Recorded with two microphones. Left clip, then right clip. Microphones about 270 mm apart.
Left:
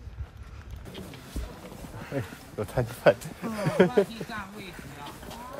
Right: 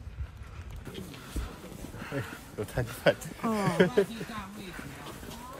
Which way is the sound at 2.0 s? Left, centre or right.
Centre.